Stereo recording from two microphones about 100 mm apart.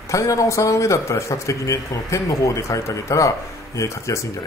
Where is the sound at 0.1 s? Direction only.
30° left (ahead or behind).